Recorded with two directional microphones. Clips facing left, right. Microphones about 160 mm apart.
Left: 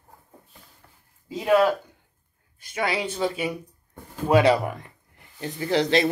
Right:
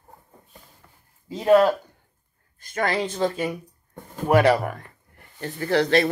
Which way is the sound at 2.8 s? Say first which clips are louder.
Right 2 dB; 10° left (ahead or behind).